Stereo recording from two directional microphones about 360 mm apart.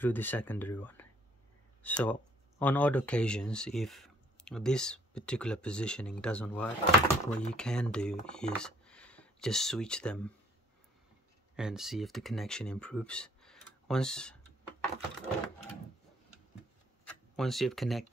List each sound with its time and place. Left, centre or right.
0.0 s speech: centre
6.8 s speech: centre
7.5 s speech: centre
11.5 s speech: centre
17.4 s speech: centre